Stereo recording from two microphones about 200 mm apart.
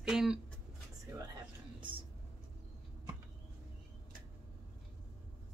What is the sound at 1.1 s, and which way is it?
Speech, 15° right (ahead or behind).